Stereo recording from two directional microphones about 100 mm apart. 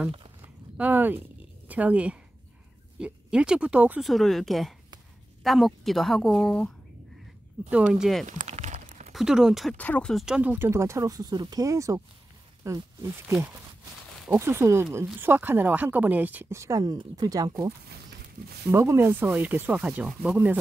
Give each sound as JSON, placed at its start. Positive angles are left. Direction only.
{"t": 0.7, "sound": "a woman's voice", "side_deg": -20}
{"t": 4.0, "sound": "a woman's voice", "side_deg": 0}
{"t": 7.7, "sound": "a woman's voice", "side_deg": -10}
{"t": 9.1, "sound": "a woman's voice", "side_deg": -5}
{"t": 9.8, "sound": "speech", "side_deg": 15}
{"t": 10.1, "sound": "a woman's voice", "side_deg": -5}
{"t": 10.7, "sound": "speech", "side_deg": -30}
{"t": 14.3, "sound": "a woman's voice", "side_deg": -25}
{"t": 16.5, "sound": "speech", "side_deg": -30}
{"t": 16.8, "sound": "a woman's voice", "side_deg": -40}